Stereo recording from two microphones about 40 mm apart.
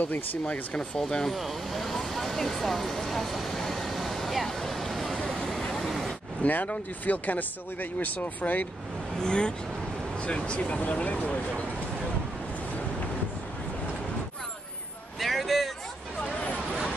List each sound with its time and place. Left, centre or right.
0.0 s speech: left
0.7 s speech: centre
1.3 s vehicle: centre
6.4 s speech: left
9.2 s speech: left
15.1 s a sound: centre